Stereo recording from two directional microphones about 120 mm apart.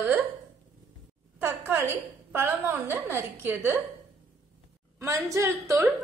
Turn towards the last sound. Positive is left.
turn(degrees=-25)  # may be behind; listen again after turning